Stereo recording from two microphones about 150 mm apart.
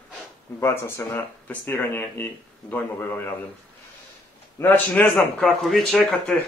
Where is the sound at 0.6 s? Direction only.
15° left (ahead or behind).